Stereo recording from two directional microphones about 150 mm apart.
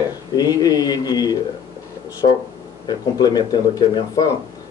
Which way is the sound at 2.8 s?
30° left (ahead or behind).